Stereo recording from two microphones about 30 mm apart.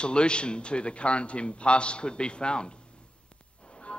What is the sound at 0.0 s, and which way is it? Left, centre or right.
A man's voice, left.